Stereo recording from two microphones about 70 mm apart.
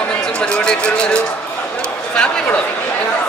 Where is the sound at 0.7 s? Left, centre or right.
Centre.